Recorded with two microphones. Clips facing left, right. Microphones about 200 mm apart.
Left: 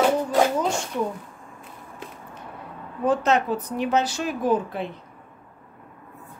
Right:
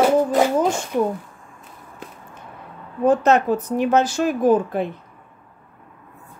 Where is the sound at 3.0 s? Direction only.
45° right (ahead or behind).